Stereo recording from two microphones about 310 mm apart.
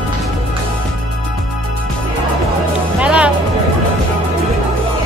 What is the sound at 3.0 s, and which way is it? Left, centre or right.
Music, centre.